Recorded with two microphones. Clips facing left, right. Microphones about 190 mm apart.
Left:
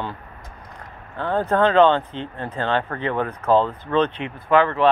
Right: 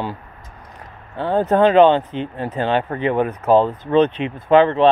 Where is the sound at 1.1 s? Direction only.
20° right (ahead or behind).